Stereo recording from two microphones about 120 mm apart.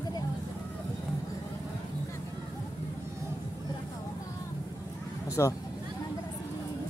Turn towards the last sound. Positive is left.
turn(degrees=25)  # may be behind; listen again after turning